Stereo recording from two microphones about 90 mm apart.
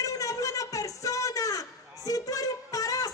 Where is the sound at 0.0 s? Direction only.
40° left (ahead or behind).